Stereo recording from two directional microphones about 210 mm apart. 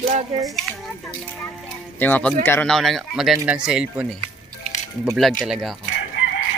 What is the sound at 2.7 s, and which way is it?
Speech, centre (ahead or behind).